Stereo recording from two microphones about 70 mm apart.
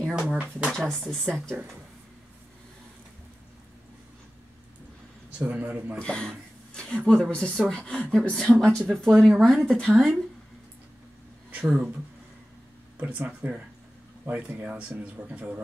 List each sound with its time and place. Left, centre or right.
0.1 s speech: centre
0.7 s a woman's voice: centre
5.5 s speech: right
5.9 s a woman's voice: centre
11.6 s speech: centre
12.9 s speech: right